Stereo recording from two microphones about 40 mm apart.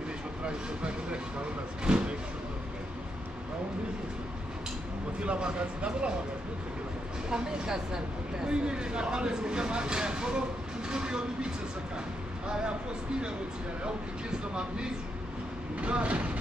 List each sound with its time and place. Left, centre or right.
0.5 s speech: right
1.9 s a sound: right
5.2 s speech: right
7.2 s speech: right
14.5 s speech: right